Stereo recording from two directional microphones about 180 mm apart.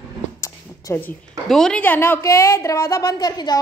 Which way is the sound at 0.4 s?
15° left (ahead or behind).